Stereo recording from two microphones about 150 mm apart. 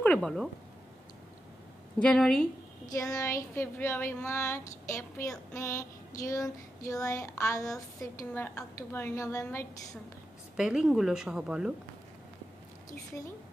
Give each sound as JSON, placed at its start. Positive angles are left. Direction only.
{"t": 0.0, "sound": "speech", "side_deg": 5}
{"t": 2.0, "sound": "a woman's voice", "side_deg": 5}
{"t": 3.0, "sound": "speech", "side_deg": 20}
{"t": 5.5, "sound": "child singing", "side_deg": 20}
{"t": 8.3, "sound": "speech", "side_deg": 10}
{"t": 8.7, "sound": "child singing", "side_deg": 15}
{"t": 10.5, "sound": "a woman's voice", "side_deg": -5}